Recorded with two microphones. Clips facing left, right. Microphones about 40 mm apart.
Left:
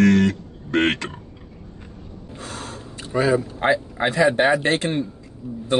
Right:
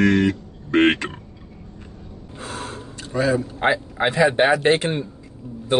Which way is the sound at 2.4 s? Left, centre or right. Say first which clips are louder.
Right 3 dB; right.